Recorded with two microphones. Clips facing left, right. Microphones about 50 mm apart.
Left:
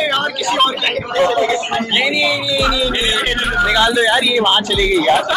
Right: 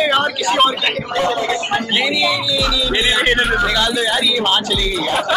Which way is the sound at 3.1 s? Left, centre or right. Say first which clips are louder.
Right 3 dB; centre.